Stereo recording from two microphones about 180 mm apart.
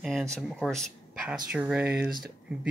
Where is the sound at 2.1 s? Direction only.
55° right (ahead or behind).